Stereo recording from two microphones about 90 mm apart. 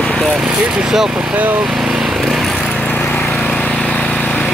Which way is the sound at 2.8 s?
20° left (ahead or behind).